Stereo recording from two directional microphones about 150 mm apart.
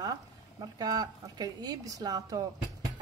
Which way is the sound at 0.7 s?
25° right (ahead or behind).